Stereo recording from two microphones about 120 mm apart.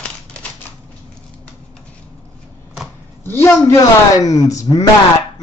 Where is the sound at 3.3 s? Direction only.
20° left (ahead or behind).